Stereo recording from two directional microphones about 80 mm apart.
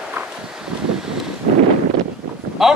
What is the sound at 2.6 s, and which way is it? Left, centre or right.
Speech, centre.